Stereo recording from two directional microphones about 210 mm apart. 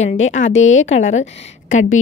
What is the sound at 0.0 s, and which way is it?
A woman's voice, 35° left (ahead or behind).